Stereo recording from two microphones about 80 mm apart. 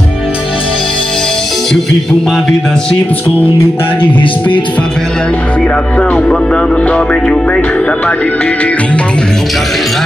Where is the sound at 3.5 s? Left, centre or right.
Left.